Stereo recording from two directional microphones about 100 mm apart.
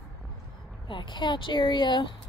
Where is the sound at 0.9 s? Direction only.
50° left (ahead or behind).